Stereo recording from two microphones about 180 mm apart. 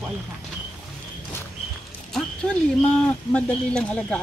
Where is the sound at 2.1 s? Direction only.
5° left (ahead or behind).